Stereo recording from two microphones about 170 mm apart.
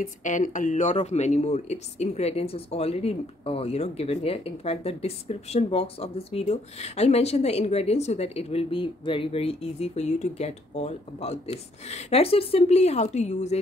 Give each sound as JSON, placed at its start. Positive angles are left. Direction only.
{"t": 0.0, "sound": "speech", "side_deg": 50}